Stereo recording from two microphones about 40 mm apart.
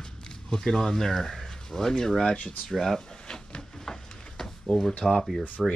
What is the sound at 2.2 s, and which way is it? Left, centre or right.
Speech, left.